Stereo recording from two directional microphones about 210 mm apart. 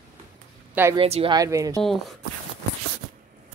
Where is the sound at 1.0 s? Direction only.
25° right (ahead or behind).